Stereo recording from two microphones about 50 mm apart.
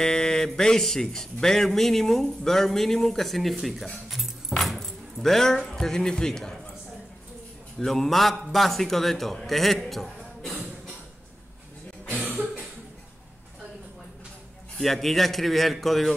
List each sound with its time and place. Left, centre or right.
0.0 s a man's voice: centre
4.1 s keys jangling: centre
5.7 s speech: centre
7.8 s a man's voice: centre
12.2 s cough: right
14.8 s a man's voice: centre